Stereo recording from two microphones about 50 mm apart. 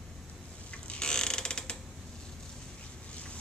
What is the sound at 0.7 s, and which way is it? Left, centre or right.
Mechanisms, centre.